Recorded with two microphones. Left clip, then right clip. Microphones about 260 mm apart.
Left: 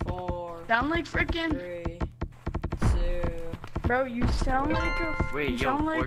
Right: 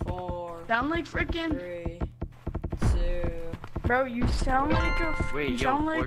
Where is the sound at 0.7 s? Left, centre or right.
Centre.